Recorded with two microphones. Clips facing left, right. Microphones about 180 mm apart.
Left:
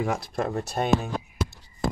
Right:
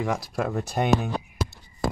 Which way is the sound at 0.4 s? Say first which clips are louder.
Even; 10° right (ahead or behind).